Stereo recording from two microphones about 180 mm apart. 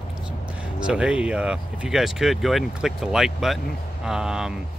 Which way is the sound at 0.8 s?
5° right (ahead or behind).